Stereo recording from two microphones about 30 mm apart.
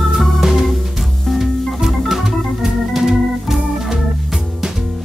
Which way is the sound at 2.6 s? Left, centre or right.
Centre.